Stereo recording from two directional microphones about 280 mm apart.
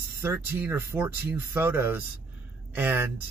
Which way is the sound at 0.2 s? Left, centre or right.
Centre.